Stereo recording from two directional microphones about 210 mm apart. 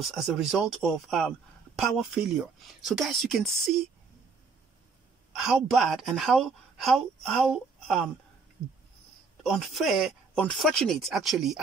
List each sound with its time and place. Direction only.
0.0 s a woman's voice: centre (ahead or behind)
5.4 s a woman's voice: centre (ahead or behind)
9.4 s a woman's voice: centre (ahead or behind)